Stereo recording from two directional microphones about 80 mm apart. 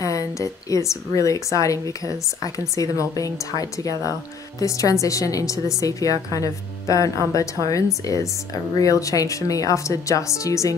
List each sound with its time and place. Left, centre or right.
0.0 s a woman's voice: left